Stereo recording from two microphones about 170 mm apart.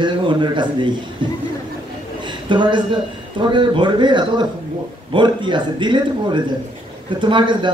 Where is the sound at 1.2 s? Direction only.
30° right (ahead or behind).